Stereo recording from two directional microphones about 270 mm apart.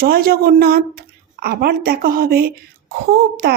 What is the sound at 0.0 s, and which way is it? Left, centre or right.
Speech, right.